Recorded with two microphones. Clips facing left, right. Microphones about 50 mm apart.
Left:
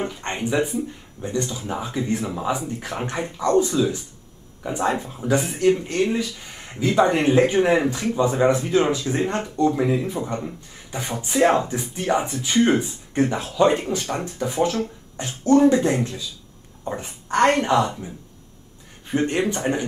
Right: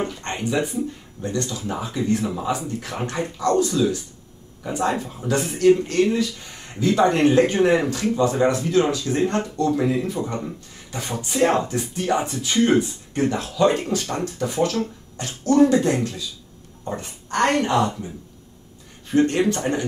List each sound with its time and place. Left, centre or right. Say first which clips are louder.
0.0 s speech: even; centre
19.1 s speech: right 3 dB; centre